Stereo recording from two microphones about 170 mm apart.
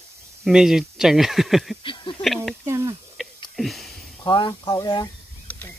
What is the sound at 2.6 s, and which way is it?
Snake, 15° right (ahead or behind).